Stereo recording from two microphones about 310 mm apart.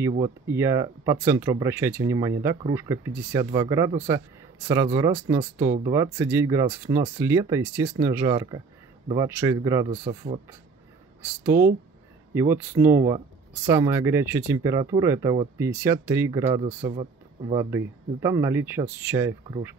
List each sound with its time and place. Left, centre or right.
0.2 s speech: centre
12.4 s speech: centre
17.6 s speech: centre